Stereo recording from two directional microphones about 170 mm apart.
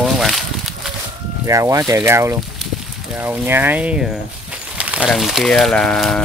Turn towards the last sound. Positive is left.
turn(degrees=5)  # may be behind; listen again after turning